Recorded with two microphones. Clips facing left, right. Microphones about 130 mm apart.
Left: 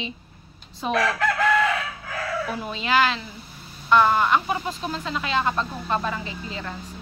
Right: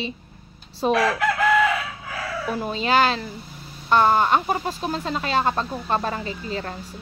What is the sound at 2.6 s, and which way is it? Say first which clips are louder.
Speech: right 3 dB; 35° right (ahead or behind).